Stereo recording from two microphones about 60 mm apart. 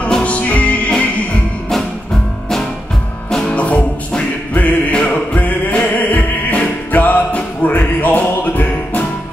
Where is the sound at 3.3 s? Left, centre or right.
Centre.